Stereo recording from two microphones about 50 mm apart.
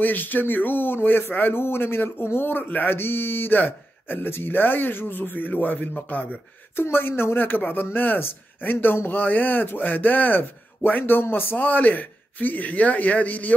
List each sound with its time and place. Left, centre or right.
0.0 s a man's voice: left
2.6 s a man's voice: left
6.8 s a woman's voice: left
11.5 s a man's voice: left